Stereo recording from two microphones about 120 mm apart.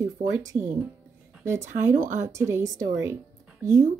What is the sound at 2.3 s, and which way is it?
Speech, 25° right (ahead or behind).